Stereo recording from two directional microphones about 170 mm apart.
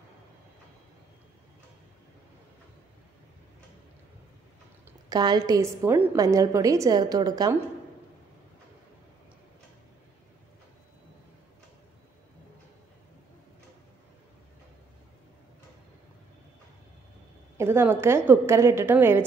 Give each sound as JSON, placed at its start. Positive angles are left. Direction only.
{"t": 5.1, "sound": "a woman's voice", "side_deg": -25}
{"t": 17.6, "sound": "a woman's voice", "side_deg": -15}